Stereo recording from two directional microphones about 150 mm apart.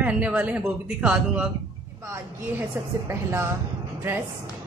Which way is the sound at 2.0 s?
20° right (ahead or behind).